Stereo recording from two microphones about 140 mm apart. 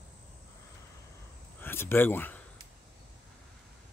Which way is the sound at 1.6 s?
15° left (ahead or behind).